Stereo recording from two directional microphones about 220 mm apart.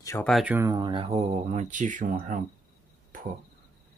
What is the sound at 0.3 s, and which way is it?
Speech, 5° right (ahead or behind).